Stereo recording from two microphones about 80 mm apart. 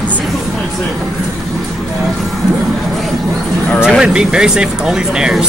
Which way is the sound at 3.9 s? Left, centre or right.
Centre.